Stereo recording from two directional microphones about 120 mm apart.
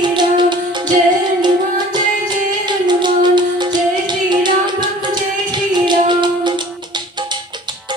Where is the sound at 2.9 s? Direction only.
40° right (ahead or behind).